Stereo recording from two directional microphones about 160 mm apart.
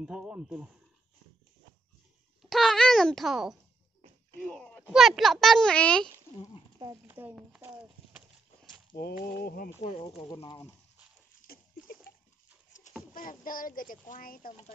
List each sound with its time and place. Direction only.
0.0 s speech: 5° right (ahead or behind)
2.4 s a child's voice: centre (ahead or behind)
4.9 s a child's voice: centre (ahead or behind)
7.1 s speech: 10° right (ahead or behind)
8.9 s a sound: 70° left (ahead or behind)
10.0 s speech: 30° left (ahead or behind)
11.5 s a sound: 70° left (ahead or behind)
13.1 s speech: 60° left (ahead or behind)